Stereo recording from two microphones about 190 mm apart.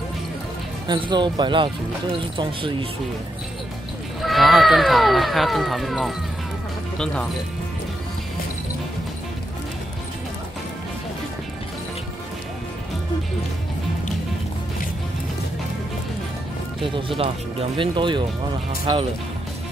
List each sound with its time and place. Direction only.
0.8 s speech: 25° right (ahead or behind)
4.2 s speech: centre (ahead or behind)
16.8 s speech: 30° right (ahead or behind)